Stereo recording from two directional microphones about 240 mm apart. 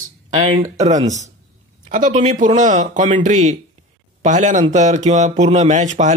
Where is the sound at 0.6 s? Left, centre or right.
Right.